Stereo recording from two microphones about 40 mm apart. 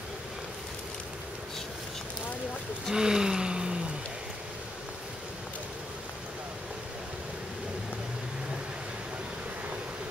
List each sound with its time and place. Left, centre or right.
2.9 s vehicle: centre